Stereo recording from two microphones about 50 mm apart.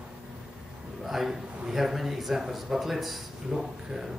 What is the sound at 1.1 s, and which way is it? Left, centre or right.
A man's voice, centre.